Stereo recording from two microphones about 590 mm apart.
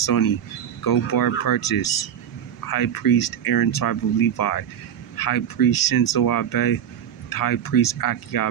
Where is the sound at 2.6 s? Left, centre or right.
Left.